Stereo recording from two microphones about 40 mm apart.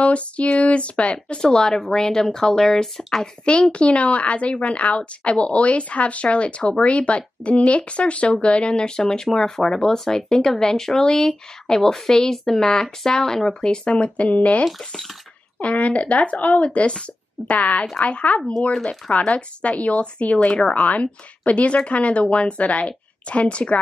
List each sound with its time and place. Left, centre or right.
0.0 s speech: left; by 2.9 s centre
3.7 s speech: left
15.6 s speech: left
20.8 s speech: left